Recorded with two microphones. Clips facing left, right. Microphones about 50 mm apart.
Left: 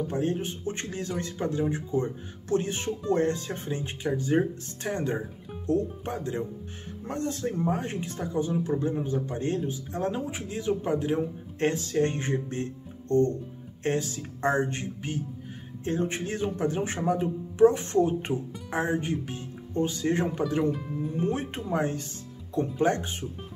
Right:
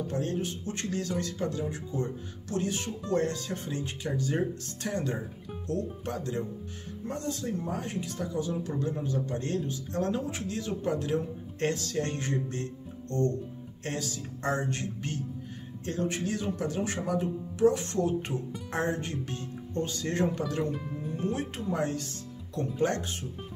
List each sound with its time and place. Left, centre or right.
0.1 s speech: centre
7.1 s speech: left
13.8 s speech: left
18.7 s speech: centre